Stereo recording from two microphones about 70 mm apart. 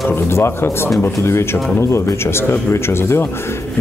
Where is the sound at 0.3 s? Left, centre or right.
Left.